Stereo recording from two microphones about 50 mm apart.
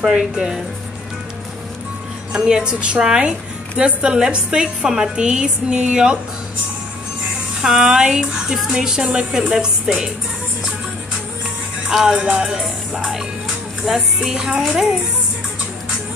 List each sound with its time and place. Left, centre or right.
0.0 s a woman's voice: centre
2.3 s a woman's voice: centre
7.6 s a woman's voice: centre
11.9 s a woman's voice: centre
12.2 s music: right
12.4 s a woman's voice: centre